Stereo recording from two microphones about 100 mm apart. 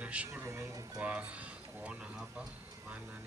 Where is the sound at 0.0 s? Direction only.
15° right (ahead or behind).